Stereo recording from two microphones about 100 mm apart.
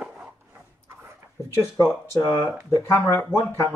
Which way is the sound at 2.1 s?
30° left (ahead or behind).